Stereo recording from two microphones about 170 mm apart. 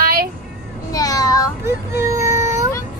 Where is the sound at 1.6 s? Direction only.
15° right (ahead or behind).